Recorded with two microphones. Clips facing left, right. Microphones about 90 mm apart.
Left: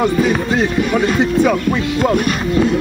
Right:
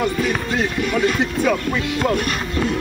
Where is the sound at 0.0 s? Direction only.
25° left (ahead or behind).